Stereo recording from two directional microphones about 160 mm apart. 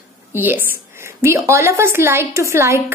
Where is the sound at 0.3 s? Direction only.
10° right (ahead or behind).